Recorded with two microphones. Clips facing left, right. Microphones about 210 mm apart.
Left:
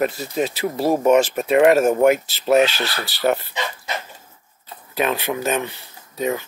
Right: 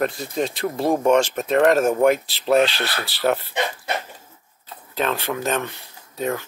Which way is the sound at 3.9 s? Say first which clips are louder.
Right 2 dB; 55° right (ahead or behind).